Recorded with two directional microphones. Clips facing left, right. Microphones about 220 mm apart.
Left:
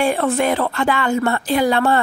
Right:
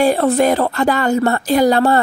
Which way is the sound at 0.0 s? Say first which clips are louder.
Right 4 dB; 35° right (ahead or behind).